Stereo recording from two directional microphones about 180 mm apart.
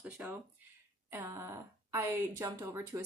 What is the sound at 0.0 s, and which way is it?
Speech, 5° right (ahead or behind).